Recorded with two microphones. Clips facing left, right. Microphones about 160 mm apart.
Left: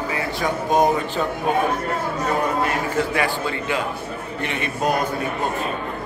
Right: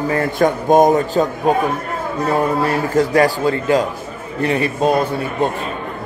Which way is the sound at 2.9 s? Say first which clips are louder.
Right 8 dB; 40° right (ahead or behind).